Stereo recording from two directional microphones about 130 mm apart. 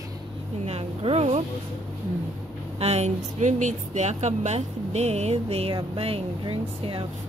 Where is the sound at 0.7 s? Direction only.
50° right (ahead or behind).